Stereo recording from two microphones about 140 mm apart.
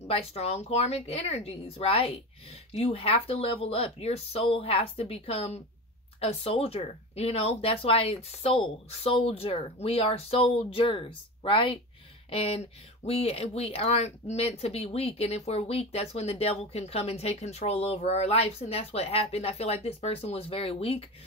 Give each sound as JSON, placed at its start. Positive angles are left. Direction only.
{"t": 0.1, "sound": "speech", "side_deg": 45}